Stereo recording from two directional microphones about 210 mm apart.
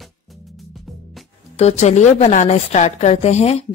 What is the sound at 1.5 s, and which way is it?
A woman's voice, 30° left (ahead or behind).